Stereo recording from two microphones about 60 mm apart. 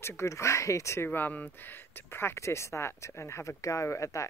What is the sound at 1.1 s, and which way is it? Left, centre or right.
Speech, left.